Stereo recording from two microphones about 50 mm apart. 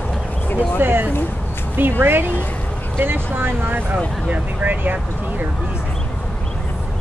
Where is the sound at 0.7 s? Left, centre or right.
Right.